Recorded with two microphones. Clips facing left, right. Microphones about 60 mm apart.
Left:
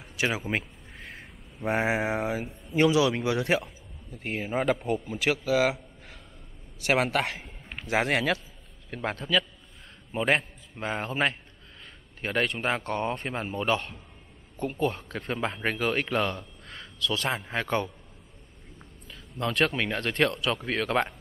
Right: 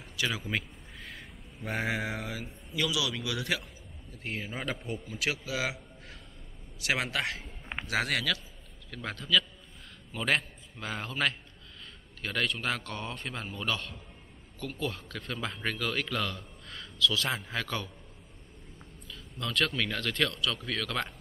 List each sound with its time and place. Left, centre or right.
0.0 s a man's voice: left
1.6 s a man's voice: left
19.0 s a man's voice: left